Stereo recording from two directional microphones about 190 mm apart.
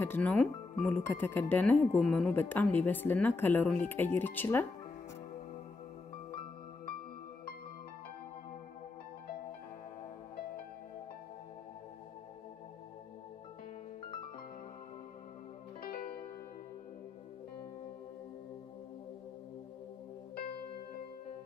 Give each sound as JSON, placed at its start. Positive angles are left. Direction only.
{"t": 0.0, "sound": "a woman's voice", "side_deg": 10}
{"t": 15.8, "sound": "music", "side_deg": 50}